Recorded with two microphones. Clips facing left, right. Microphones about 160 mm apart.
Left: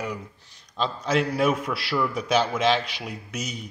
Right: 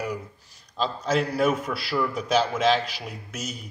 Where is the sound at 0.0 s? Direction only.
5° right (ahead or behind).